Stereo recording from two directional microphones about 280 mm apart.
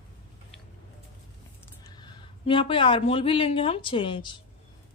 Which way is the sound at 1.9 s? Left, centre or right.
Centre.